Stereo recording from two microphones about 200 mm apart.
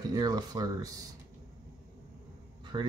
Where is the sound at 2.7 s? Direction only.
25° right (ahead or behind).